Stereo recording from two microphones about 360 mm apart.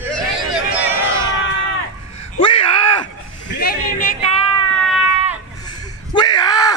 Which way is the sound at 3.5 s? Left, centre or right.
Left.